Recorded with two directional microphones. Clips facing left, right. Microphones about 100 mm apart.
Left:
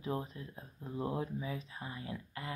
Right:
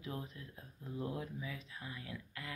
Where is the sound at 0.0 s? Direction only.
30° left (ahead or behind).